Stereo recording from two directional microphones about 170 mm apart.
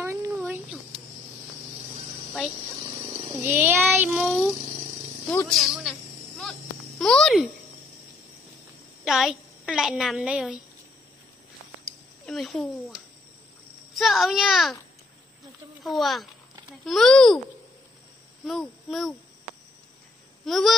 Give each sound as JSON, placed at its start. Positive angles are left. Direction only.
{"t": 0.0, "sound": "a sound", "side_deg": -15}
{"t": 3.4, "sound": "child singing", "side_deg": -10}
{"t": 5.3, "sound": "snake", "side_deg": 5}
{"t": 7.0, "sound": "a sound", "side_deg": 5}
{"t": 9.0, "sound": "a woman's voice", "side_deg": 0}
{"t": 12.3, "sound": "a child's voice", "side_deg": 0}
{"t": 13.9, "sound": "a child's voice", "side_deg": 0}
{"t": 15.8, "sound": "a child's voice", "side_deg": 0}
{"t": 18.4, "sound": "a child's voice", "side_deg": 0}
{"t": 20.4, "sound": "a child's voice", "side_deg": 0}